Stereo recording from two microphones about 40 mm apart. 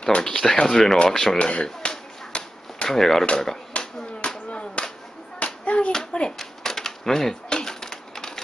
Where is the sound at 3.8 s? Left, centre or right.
Left.